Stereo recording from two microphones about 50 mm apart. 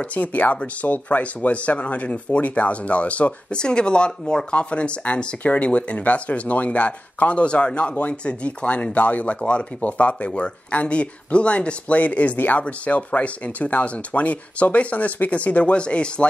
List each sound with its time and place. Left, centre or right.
0.1 s speech: left